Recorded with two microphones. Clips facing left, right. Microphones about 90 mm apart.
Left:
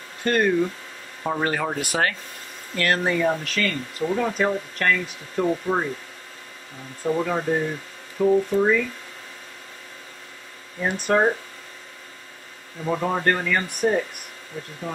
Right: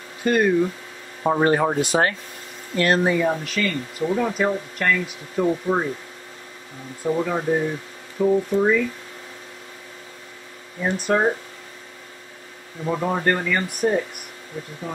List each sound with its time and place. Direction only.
0.2 s speech: 5° right (ahead or behind)
1.2 s speech: 25° right (ahead or behind)
3.0 s speech: 5° right (ahead or behind)
7.0 s speech: centre (ahead or behind)
10.8 s speech: 5° left (ahead or behind)
12.8 s speech: centre (ahead or behind)